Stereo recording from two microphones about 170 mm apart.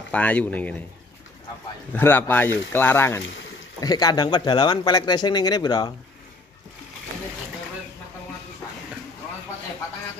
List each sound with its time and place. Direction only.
0.1 s speech: 10° left (ahead or behind)
1.9 s speech: 10° left (ahead or behind)